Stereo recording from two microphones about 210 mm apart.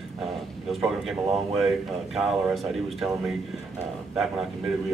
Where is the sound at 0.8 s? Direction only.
Centre (ahead or behind).